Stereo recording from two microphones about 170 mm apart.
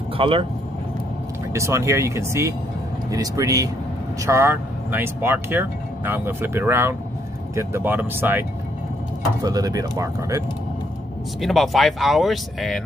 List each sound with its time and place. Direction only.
0.2 s speech: 30° right (ahead or behind)
1.5 s speech: 15° right (ahead or behind)
11.4 s speech: centre (ahead or behind)